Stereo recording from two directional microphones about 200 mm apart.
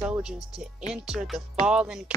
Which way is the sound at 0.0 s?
5° right (ahead or behind).